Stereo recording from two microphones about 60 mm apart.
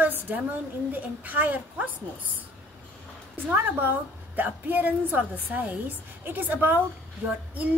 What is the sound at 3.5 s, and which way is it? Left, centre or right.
A woman's voice, right.